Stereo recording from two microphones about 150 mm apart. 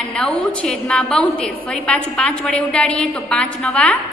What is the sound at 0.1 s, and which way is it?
A woman's voice, 5° left (ahead or behind).